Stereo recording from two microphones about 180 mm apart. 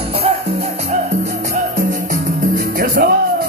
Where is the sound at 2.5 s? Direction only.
55° right (ahead or behind).